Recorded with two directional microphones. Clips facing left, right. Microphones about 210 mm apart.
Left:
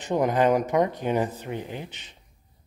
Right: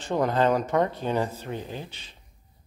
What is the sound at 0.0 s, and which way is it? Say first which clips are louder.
Speech: left 1 dB; 15° left (ahead or behind).